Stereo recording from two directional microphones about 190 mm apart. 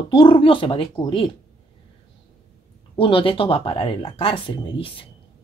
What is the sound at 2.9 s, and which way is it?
Speech, 30° left (ahead or behind).